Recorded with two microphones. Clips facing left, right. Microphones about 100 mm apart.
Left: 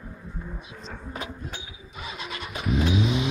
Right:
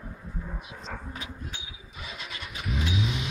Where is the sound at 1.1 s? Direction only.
50° left (ahead or behind).